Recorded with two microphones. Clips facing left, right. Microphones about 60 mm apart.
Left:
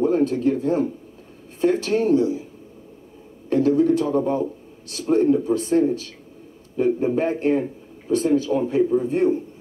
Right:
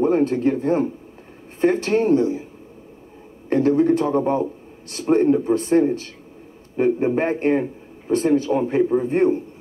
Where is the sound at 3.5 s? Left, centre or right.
Right.